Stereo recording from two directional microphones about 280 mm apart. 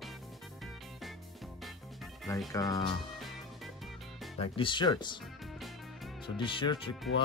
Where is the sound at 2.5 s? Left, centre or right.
Centre.